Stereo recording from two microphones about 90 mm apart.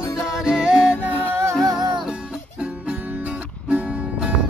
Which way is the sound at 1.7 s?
50° right (ahead or behind).